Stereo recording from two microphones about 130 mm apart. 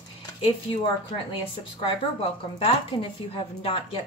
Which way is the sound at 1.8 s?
45° left (ahead or behind).